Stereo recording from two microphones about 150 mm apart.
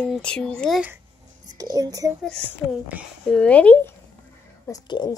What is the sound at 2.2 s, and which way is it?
Speech, 5° left (ahead or behind).